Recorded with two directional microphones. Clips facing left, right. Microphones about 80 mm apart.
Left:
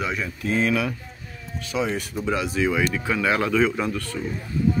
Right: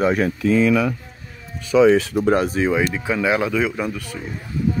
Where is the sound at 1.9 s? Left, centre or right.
Right.